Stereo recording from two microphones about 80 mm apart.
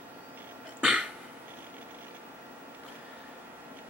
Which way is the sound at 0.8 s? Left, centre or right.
Centre.